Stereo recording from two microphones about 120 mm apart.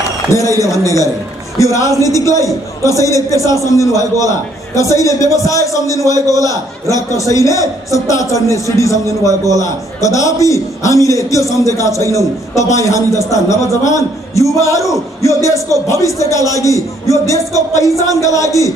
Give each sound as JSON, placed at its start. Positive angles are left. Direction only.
{"t": 0.3, "sound": "a man's voice", "side_deg": 25}